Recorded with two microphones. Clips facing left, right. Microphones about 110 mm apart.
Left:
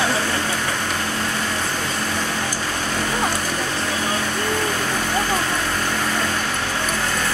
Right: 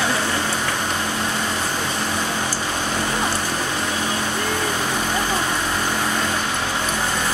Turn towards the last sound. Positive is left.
turn(degrees=-15)  # may be behind; listen again after turning